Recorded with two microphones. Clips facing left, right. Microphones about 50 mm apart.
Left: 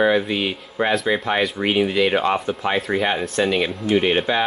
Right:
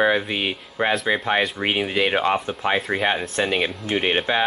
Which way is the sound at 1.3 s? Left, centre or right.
Centre.